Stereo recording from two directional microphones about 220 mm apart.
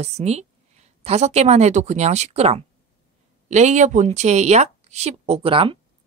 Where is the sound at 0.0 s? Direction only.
30° right (ahead or behind).